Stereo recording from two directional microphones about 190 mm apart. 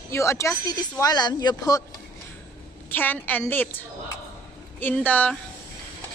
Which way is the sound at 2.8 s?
10° left (ahead or behind).